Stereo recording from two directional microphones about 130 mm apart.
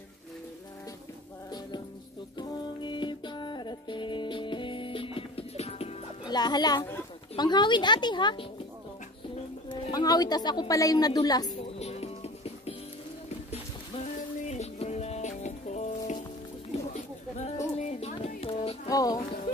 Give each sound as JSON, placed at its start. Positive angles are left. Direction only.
{"t": 2.3, "sound": "music", "side_deg": 35}
{"t": 6.2, "sound": "a child's voice", "side_deg": 30}
{"t": 9.8, "sound": "a woman's voice", "side_deg": 30}
{"t": 11.6, "sound": "music", "side_deg": 50}
{"t": 14.5, "sound": "music", "side_deg": 55}
{"t": 16.7, "sound": "a sound", "side_deg": 60}
{"t": 17.7, "sound": "music", "side_deg": 60}
{"t": 18.4, "sound": "a sound", "side_deg": 50}
{"t": 18.9, "sound": "music", "side_deg": 30}